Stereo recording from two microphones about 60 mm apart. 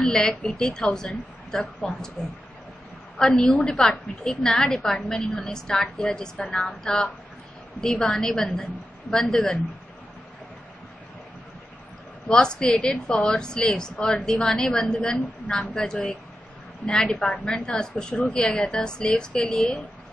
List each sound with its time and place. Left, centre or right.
0.0 s a sound: centre
0.3 s a woman's voice: left
3.2 s a woman's voice: centre
12.3 s a woman's voice: centre
15.1 s a woman's voice: left
15.7 s a woman's voice: centre